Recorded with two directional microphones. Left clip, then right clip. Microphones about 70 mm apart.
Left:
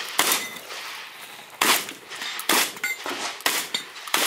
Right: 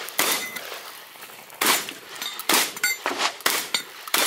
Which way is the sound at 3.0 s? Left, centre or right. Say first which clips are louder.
Right 5 dB; right.